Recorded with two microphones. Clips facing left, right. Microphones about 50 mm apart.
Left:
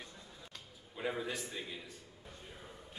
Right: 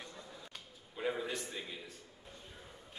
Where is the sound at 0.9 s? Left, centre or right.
Centre.